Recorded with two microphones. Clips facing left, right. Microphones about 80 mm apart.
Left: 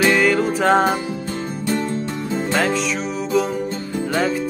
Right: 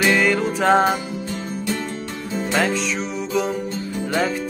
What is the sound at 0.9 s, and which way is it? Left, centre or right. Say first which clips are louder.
Music: left 2 dB; left.